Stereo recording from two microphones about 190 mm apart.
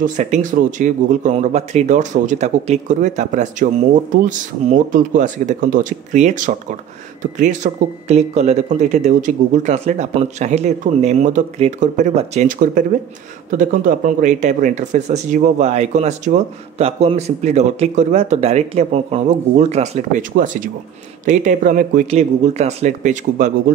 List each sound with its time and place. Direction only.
0.0 s speech: 40° right (ahead or behind)